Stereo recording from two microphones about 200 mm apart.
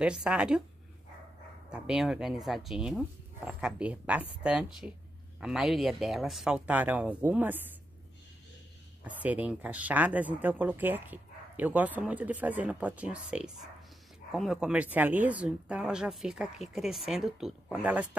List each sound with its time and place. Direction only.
0.0 s speech: 5° right (ahead or behind)
1.7 s speech: 5° right (ahead or behind)
9.0 s speech: 10° right (ahead or behind)